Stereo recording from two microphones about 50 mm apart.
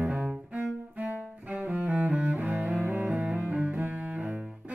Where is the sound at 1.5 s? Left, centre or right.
Centre.